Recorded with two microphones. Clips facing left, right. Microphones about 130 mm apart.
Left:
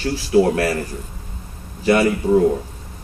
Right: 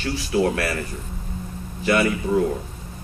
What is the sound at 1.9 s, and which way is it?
Speech, 35° left (ahead or behind).